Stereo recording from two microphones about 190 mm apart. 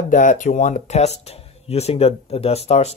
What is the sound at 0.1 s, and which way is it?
Speech, 40° left (ahead or behind).